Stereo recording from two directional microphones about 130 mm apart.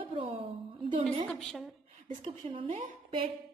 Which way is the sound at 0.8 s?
45° right (ahead or behind).